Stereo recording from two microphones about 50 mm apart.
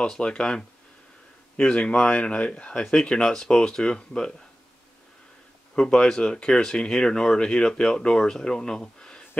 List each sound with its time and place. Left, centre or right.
0.0 s speech: centre
5.8 s speech: centre